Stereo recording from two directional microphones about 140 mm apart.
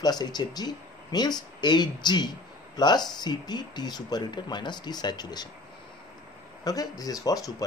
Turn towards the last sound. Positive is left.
turn(degrees=25)  # may be behind; listen again after turning